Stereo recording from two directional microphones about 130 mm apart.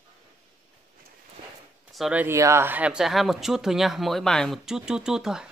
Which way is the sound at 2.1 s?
20° right (ahead or behind).